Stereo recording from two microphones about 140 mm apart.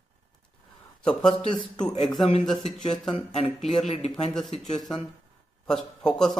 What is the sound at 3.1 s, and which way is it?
Speech, 50° left (ahead or behind).